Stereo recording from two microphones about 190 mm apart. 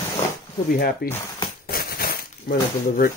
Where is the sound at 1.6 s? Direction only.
50° left (ahead or behind).